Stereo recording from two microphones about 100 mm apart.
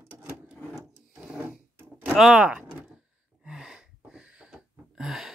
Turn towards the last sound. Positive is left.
turn(degrees=-5)  # may be behind; listen again after turning